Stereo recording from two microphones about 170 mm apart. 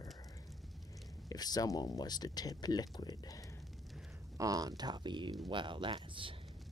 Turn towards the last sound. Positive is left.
turn(degrees=-30)  # may be behind; listen again after turning